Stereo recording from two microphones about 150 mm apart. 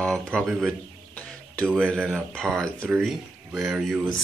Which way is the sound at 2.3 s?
15° right (ahead or behind).